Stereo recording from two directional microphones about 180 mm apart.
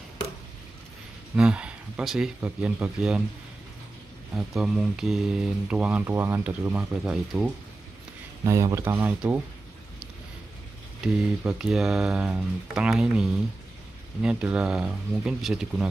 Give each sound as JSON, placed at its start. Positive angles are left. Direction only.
{"t": 1.3, "sound": "speech", "side_deg": -5}
{"t": 4.4, "sound": "speech", "side_deg": -5}
{"t": 8.5, "sound": "speech", "side_deg": -15}
{"t": 11.4, "sound": "speech", "side_deg": -5}